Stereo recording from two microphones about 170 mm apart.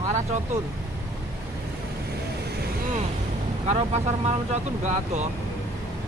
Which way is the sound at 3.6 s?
40° right (ahead or behind).